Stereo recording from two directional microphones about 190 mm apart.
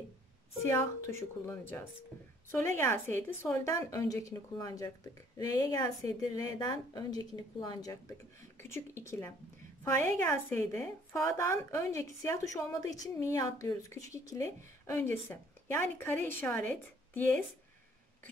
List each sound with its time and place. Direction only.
0.7 s a woman's voice: 15° left (ahead or behind)